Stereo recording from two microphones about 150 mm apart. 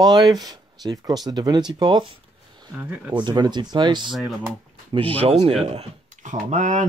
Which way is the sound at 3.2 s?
30° right (ahead or behind).